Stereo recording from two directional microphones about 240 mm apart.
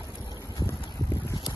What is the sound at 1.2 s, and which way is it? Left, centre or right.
Boat, centre.